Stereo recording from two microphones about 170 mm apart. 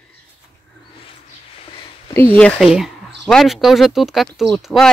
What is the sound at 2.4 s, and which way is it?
Speech, 5° left (ahead or behind).